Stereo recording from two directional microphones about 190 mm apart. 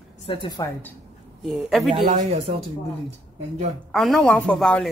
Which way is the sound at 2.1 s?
30° right (ahead or behind).